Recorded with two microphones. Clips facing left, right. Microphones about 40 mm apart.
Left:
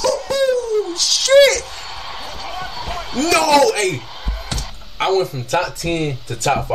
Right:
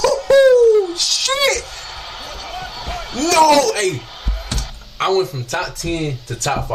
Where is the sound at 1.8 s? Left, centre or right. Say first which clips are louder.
Left 1 dB; centre.